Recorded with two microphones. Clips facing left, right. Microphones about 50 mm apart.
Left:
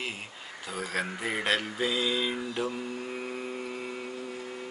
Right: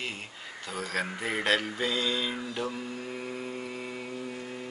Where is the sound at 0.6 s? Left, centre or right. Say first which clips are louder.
Even; centre.